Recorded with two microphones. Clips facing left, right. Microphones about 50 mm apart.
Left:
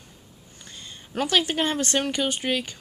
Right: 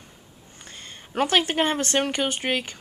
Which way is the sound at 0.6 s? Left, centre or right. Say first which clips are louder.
Right 1 dB; right.